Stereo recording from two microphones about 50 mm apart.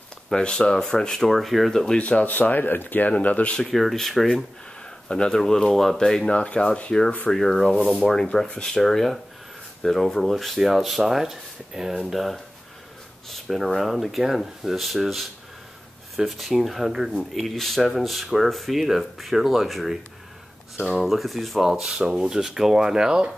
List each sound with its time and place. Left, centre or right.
0.3 s speech: centre
1.7 s speech: centre
2.0 s speech: left
3.1 s speech: left
3.6 s speech: centre
5.1 s speech: centre
6.3 s speech: left
6.9 s speech: centre
16.3 s speech: centre
21.6 s speech: centre